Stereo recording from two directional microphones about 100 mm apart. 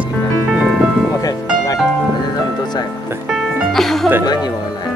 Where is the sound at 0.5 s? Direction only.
5° right (ahead or behind).